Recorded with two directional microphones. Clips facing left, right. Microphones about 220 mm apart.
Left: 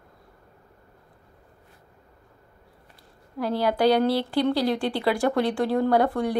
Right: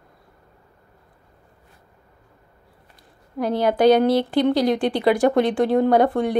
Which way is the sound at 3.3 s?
20° right (ahead or behind).